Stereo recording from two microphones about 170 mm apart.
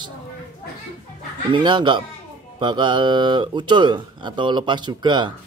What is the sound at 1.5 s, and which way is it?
Speech, 30° right (ahead or behind).